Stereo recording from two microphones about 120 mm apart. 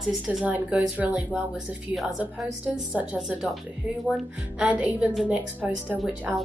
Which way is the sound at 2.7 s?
10° right (ahead or behind).